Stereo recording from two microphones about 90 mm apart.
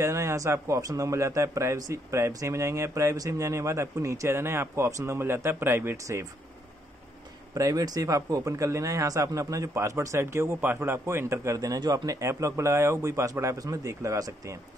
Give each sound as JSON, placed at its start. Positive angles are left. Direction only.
{"t": 0.0, "sound": "a man's voice", "side_deg": -30}
{"t": 7.5, "sound": "a man's voice", "side_deg": -40}